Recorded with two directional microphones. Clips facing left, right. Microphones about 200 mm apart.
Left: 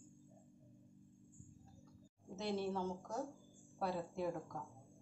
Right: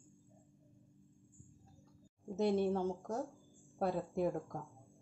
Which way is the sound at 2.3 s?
50° right (ahead or behind).